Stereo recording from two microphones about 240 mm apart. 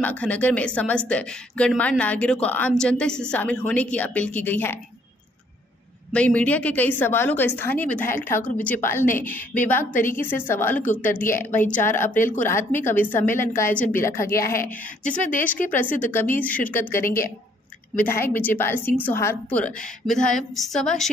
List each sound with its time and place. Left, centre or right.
0.0 s a woman's voice: centre
6.1 s a woman's voice: centre
12.1 s speech: left
12.4 s a woman's voice: centre
15.7 s a woman's voice: centre